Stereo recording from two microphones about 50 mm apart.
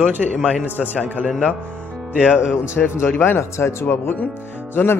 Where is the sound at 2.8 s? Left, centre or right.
Left.